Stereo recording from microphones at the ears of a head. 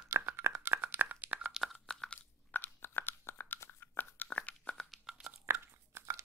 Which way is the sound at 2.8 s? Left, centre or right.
Left.